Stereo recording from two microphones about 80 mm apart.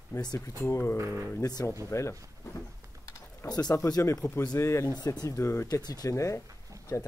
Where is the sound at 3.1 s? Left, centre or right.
Left.